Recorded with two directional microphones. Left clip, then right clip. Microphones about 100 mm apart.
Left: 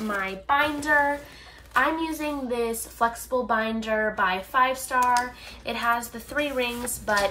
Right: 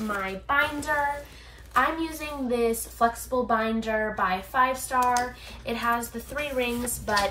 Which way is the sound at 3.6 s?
50° right (ahead or behind).